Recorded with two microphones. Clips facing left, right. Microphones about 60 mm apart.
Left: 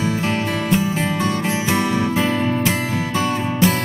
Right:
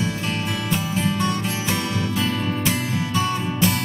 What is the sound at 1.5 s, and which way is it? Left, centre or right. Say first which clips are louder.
Music: left 5 dB; left.